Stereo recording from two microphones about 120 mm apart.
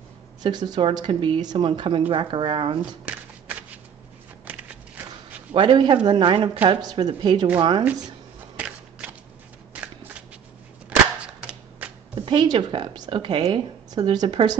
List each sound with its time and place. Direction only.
0.4 s a woman's voice: 35° right (ahead or behind)
3.1 s a sound: 10° right (ahead or behind)
4.5 s biting: 15° right (ahead or behind)
5.5 s a man's voice: 45° right (ahead or behind)
6.8 s a woman's voice: 35° right (ahead or behind)
8.5 s biting: 10° right (ahead or behind)
11.2 s typewriter: 10° right (ahead or behind)
12.2 s a woman's voice: 40° right (ahead or behind)
13.4 s speech: 35° right (ahead or behind)